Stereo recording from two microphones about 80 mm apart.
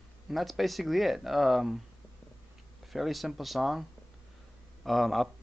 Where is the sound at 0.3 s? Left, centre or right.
Centre.